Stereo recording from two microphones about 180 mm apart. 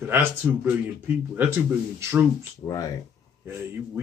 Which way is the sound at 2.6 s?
20° left (ahead or behind).